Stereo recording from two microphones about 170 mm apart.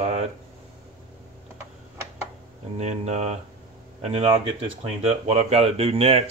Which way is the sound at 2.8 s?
40° right (ahead or behind).